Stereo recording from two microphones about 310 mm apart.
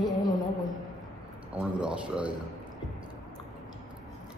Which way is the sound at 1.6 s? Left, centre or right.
Centre.